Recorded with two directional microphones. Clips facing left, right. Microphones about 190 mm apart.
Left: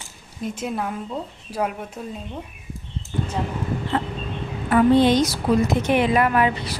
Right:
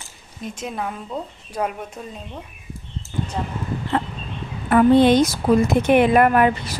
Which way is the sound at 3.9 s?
55° right (ahead or behind).